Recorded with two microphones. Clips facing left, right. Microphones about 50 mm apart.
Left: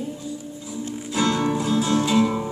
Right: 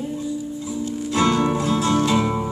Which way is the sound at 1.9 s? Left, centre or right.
Right.